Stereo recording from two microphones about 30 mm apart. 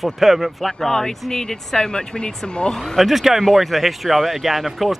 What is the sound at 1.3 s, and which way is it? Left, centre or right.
Speech, left.